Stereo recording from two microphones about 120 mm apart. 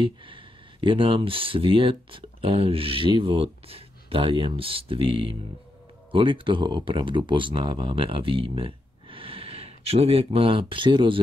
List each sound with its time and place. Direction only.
0.0 s speech: 45° right (ahead or behind)